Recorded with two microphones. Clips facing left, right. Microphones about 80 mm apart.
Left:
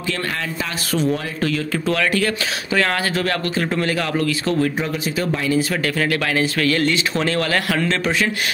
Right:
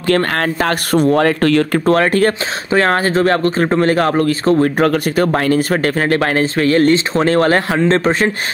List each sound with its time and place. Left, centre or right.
0.7 s speech: right
1.9 s speech: right
4.7 s speech: right